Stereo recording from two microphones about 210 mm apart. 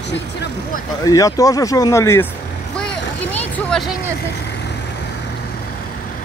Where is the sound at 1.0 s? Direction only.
15° left (ahead or behind).